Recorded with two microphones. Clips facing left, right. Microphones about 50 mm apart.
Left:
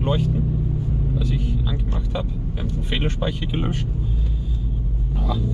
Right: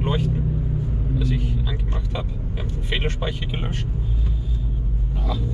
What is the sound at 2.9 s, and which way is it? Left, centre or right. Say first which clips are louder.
Speech: left 1 dB; centre.